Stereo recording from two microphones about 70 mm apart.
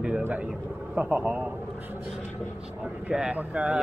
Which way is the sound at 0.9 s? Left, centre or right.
Centre.